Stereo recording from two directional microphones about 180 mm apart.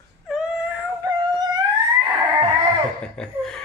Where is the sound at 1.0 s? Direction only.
20° right (ahead or behind).